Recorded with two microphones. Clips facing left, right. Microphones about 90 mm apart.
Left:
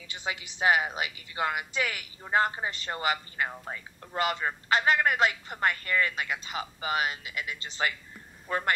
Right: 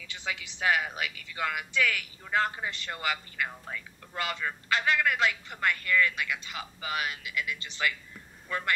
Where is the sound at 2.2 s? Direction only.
30° left (ahead or behind).